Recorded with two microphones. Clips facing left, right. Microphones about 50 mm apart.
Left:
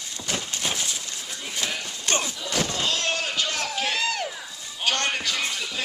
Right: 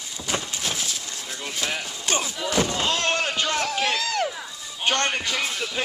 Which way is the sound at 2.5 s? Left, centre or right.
Right.